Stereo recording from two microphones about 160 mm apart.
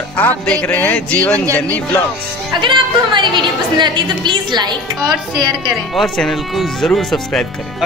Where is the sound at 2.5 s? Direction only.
30° right (ahead or behind).